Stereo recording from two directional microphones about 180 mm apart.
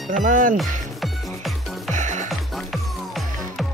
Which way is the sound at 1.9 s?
40° right (ahead or behind).